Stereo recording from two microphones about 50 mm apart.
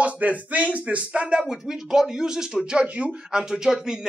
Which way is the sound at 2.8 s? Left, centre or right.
Right.